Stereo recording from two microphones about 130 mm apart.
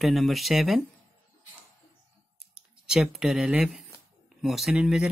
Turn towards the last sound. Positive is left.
turn(degrees=-5)  # may be behind; listen again after turning